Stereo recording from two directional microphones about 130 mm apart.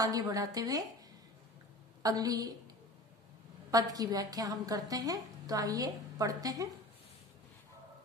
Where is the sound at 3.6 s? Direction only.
30° right (ahead or behind).